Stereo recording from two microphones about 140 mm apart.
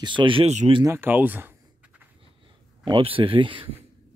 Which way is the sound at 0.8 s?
15° right (ahead or behind).